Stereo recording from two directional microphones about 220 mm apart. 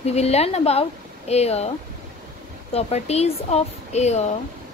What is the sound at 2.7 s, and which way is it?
Speech, 30° left (ahead or behind).